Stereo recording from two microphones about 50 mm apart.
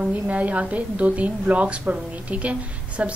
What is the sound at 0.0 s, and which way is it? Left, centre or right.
A woman's voice, right.